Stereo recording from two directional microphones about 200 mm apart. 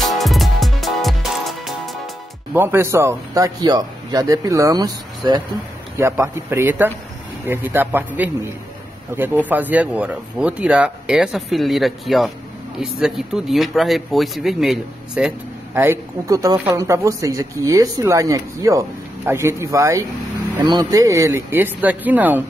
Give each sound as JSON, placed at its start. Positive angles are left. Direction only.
{"t": 0.0, "sound": "music", "side_deg": 0}
{"t": 2.5, "sound": "speech", "side_deg": -10}